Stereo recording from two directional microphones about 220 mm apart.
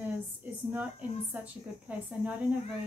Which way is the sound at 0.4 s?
5° right (ahead or behind).